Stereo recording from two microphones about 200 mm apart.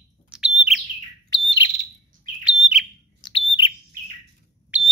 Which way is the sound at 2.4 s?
5° right (ahead or behind).